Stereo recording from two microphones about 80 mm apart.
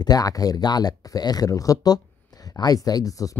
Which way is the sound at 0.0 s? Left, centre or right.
Left.